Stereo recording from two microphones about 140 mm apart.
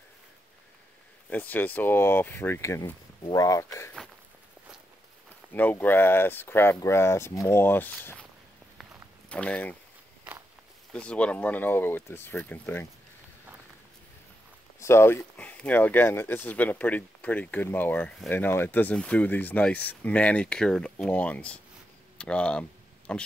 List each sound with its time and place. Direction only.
1.3 s speech: 10° left (ahead or behind)
5.5 s speech: 10° left (ahead or behind)
9.3 s speech: 10° left (ahead or behind)
10.9 s speech: 5° left (ahead or behind)
14.8 s speech: 20° left (ahead or behind)